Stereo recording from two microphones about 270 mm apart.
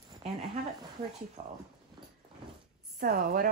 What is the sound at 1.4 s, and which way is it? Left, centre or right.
Speech, right.